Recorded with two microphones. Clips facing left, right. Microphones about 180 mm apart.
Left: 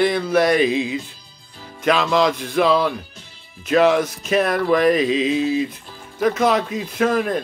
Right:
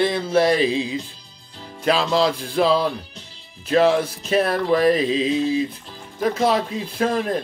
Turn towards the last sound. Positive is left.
turn(degrees=-30)  # may be behind; listen again after turning